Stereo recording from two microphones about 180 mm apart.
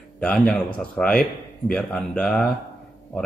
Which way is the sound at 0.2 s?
5° left (ahead or behind).